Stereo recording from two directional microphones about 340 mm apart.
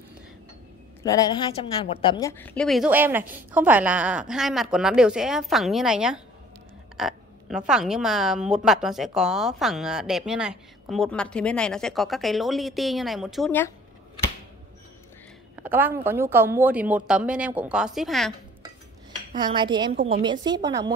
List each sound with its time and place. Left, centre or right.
1.0 s a woman's voice: centre
15.6 s a woman's voice: centre
19.3 s a woman's voice: centre
20.0 s a woman's voice: right
20.2 s a woman's voice: centre